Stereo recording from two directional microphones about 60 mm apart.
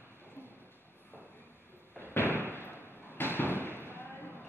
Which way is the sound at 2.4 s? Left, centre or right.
Left.